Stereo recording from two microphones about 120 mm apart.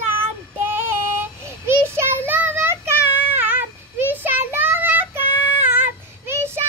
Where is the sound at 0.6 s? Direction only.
20° right (ahead or behind).